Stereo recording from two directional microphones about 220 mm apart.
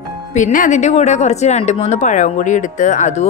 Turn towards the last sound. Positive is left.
turn(degrees=30)  # may be behind; listen again after turning